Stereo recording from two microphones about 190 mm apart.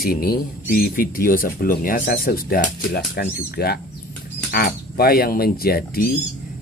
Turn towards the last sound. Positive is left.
turn(degrees=50)  # may be behind; listen again after turning